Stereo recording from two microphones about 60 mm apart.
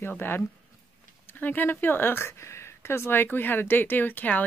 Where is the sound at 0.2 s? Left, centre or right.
Left.